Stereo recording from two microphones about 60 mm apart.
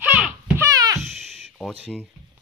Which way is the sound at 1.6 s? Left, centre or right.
Centre.